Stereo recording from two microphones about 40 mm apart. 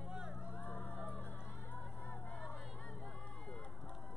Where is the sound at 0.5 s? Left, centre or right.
Left.